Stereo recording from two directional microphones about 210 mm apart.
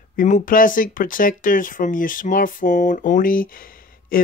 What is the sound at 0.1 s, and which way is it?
Speech, 40° left (ahead or behind).